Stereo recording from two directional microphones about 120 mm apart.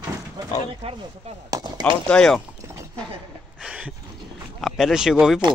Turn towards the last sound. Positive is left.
turn(degrees=-5)  # may be behind; listen again after turning